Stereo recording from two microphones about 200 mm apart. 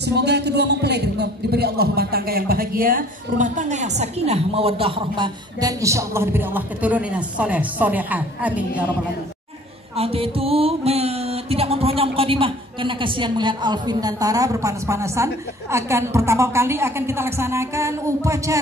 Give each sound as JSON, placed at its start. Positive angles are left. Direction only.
{"t": 0.0, "sound": "a man's voice", "side_deg": -55}
{"t": 9.9, "sound": "music", "side_deg": -30}